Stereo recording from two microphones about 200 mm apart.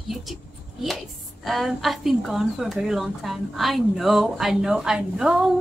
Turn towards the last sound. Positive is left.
turn(degrees=-5)  # may be behind; listen again after turning